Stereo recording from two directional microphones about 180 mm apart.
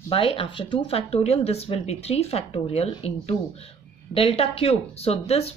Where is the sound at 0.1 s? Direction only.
30° left (ahead or behind).